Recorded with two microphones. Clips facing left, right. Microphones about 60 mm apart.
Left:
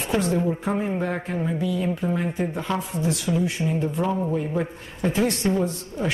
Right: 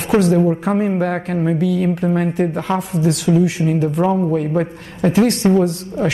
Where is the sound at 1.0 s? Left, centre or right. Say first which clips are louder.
Right 7 dB; right.